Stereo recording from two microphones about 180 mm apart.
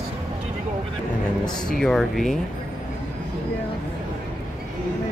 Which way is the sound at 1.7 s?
5° left (ahead or behind).